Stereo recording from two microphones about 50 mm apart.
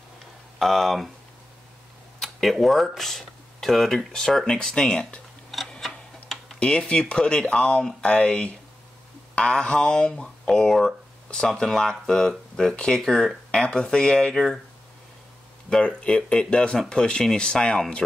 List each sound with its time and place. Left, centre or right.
0.6 s speech: centre
2.1 s a sound: centre
3.0 s speech: centre
5.8 s tick-tock: centre
6.6 s speech: left
15.8 s speech: left